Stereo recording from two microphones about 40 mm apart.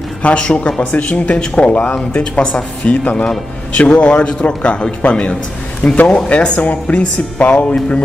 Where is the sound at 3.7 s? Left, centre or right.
Left.